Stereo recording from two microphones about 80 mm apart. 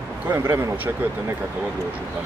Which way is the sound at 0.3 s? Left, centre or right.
Right.